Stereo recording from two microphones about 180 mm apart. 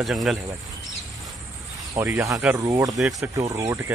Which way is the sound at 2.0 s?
15° right (ahead or behind).